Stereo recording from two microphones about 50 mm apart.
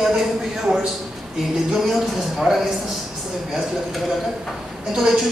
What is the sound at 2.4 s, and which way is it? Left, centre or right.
Speech, centre.